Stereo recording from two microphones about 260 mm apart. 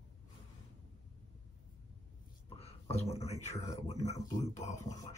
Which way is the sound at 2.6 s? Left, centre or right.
Left.